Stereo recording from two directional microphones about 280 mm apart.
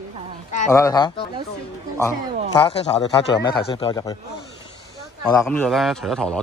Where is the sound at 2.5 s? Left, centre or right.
Centre.